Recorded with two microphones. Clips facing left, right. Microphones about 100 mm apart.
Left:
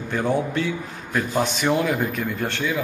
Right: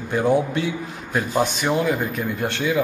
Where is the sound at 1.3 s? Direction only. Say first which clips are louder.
Even; 5° right (ahead or behind).